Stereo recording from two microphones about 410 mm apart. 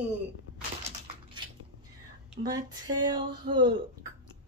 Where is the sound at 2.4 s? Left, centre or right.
Centre.